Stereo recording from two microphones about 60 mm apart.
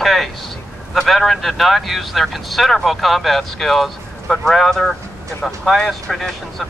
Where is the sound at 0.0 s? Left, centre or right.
Centre.